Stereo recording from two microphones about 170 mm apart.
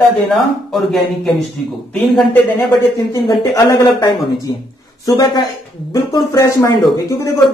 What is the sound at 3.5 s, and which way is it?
Speech, 20° left (ahead or behind).